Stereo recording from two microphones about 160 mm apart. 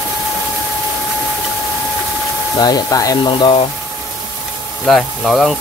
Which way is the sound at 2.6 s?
25° left (ahead or behind).